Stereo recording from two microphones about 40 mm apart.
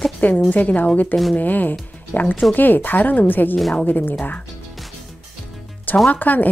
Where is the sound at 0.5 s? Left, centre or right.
Left.